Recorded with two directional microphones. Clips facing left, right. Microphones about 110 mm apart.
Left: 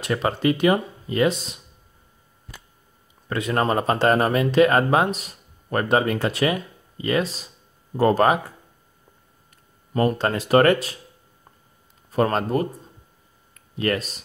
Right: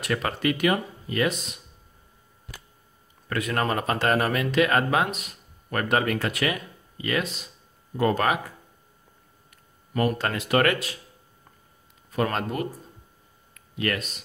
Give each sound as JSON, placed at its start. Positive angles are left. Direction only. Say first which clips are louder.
{"t": 0.0, "sound": "speech", "louder": "left 4 dB", "side_deg": 25}
{"t": 3.3, "sound": "speech", "louder": "left 4 dB", "side_deg": 25}
{"t": 9.9, "sound": "speech", "louder": "left 4 dB", "side_deg": 30}
{"t": 12.1, "sound": "speech", "louder": "left 5 dB", "side_deg": 35}
{"t": 13.7, "sound": "speech", "louder": "left 4 dB", "side_deg": 35}